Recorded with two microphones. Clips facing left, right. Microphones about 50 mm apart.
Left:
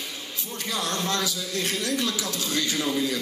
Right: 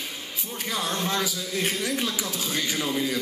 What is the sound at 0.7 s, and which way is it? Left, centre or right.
A man's voice, centre.